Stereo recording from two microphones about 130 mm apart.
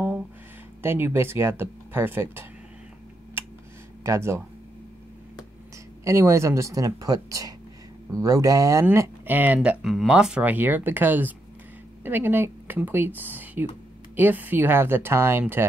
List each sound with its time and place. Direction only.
0.8 s speech: 15° right (ahead or behind)
4.0 s speech: 20° right (ahead or behind)
6.0 s speech: 20° right (ahead or behind)